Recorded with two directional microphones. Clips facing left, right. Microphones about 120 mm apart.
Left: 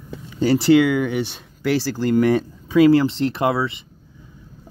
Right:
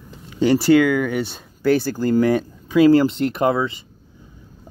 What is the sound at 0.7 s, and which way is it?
Speech, 20° left (ahead or behind).